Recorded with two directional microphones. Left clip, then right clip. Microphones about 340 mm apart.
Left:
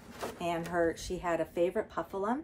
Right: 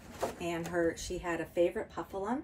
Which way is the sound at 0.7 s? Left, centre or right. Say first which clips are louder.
Even; centre.